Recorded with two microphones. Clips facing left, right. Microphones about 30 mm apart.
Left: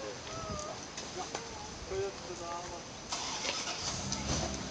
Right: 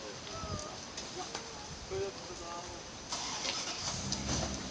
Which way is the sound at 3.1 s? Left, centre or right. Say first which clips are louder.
Left 1 dB; centre.